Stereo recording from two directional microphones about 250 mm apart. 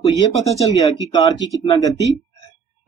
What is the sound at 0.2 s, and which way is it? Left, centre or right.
Speech, centre.